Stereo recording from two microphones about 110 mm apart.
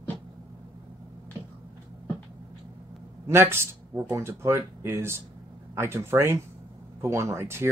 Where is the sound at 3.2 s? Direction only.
25° right (ahead or behind).